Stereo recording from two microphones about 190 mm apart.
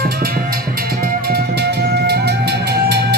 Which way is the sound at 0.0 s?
50° right (ahead or behind).